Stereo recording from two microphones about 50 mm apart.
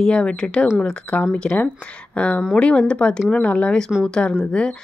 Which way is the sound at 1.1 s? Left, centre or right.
Left.